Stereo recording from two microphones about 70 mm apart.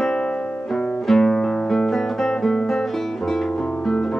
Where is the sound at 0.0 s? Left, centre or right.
Centre.